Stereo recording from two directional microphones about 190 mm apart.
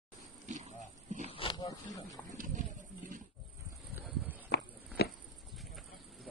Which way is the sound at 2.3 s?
45° right (ahead or behind).